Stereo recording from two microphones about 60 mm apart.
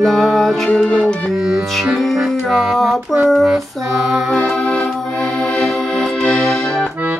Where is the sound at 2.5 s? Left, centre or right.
Centre.